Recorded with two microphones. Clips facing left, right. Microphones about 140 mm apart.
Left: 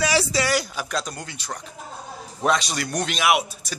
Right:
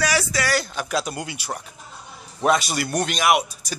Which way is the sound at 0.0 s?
30° left (ahead or behind).